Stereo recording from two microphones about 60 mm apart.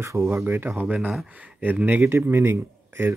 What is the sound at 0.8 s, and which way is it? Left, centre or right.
Speech, right.